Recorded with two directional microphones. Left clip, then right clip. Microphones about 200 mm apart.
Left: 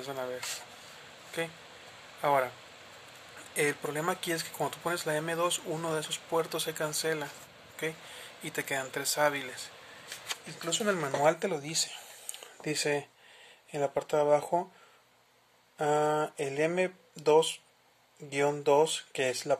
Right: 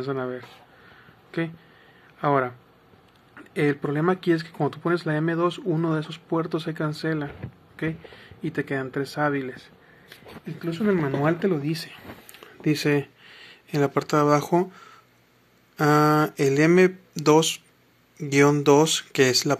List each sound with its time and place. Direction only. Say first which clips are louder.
0.0 s speech: right 7 dB; 10° left (ahead or behind)
3.5 s speech: right 6 dB; 15° left (ahead or behind)
10.6 s speech: right 6 dB; 25° left (ahead or behind)
11.2 s speech: right 1 dB; 10° left (ahead or behind)
12.6 s a sound: right 8 dB; 5° left (ahead or behind)
13.7 s speech: right 7 dB; centre (ahead or behind)
15.8 s speech: right 8 dB; centre (ahead or behind)